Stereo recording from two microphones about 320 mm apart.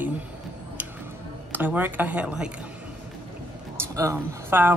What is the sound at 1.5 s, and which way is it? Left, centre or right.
Speech, centre.